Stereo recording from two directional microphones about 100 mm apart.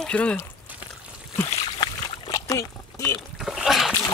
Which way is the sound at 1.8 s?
55° left (ahead or behind).